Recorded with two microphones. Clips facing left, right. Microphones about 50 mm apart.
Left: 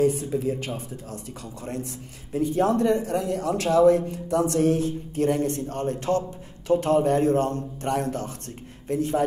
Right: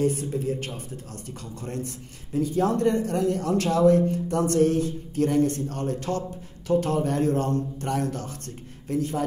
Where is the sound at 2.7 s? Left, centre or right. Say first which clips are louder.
Left 1 dB; centre.